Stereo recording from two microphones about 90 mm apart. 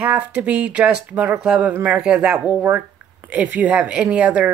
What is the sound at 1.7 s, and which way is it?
Speech, 20° right (ahead or behind).